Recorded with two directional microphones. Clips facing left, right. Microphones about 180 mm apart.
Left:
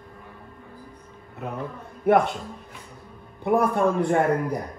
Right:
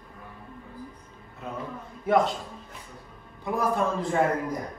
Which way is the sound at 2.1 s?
60° left (ahead or behind).